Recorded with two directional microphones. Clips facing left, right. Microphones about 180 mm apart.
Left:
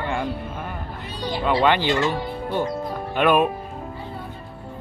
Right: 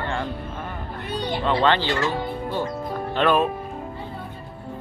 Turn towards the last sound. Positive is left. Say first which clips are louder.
# left 1 dB
turn(degrees=15)  # may be behind; listen again after turning